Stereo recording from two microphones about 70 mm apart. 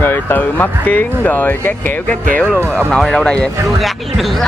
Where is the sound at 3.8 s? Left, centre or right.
Centre.